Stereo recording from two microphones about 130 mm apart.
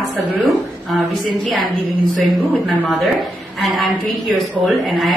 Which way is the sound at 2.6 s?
5° right (ahead or behind).